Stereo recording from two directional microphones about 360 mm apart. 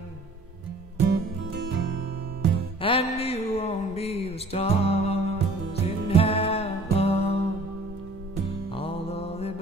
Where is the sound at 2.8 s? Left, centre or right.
Centre.